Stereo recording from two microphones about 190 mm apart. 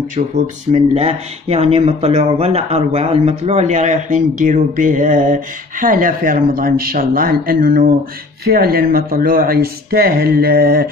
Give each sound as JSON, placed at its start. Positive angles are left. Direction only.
{"t": 0.7, "sound": "speech", "side_deg": -35}